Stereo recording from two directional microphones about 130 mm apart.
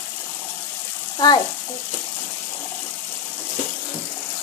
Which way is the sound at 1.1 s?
30° left (ahead or behind).